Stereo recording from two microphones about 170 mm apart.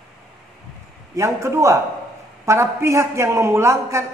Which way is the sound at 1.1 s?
15° right (ahead or behind).